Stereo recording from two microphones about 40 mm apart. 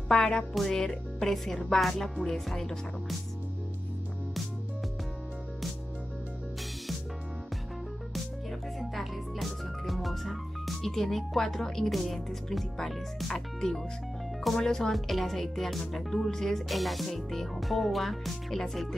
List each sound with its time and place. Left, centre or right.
0.1 s speech: left
0.5 s speech: centre
8.7 s organ: centre
10.8 s speech: centre
14.9 s speech: centre
16.6 s speech: centre